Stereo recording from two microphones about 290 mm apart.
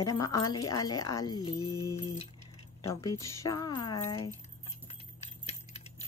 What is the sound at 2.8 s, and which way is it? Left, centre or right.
Speech, centre.